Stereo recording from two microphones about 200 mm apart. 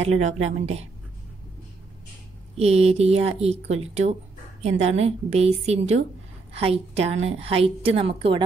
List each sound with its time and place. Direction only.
0.0 s speech: 35° right (ahead or behind)
2.5 s a woman's voice: 30° right (ahead or behind)